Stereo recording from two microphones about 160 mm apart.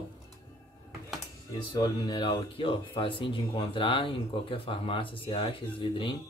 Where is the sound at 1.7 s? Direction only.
30° left (ahead or behind).